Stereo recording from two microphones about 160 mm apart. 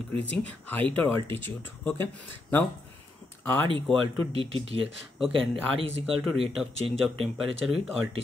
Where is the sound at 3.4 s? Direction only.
15° left (ahead or behind).